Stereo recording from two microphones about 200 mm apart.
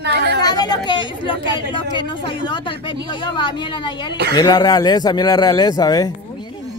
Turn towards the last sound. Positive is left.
turn(degrees=20)  # may be behind; listen again after turning